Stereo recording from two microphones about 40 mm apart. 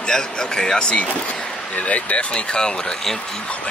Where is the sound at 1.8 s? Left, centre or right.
Left.